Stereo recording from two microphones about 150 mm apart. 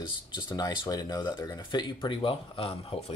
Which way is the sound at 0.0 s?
30° left (ahead or behind).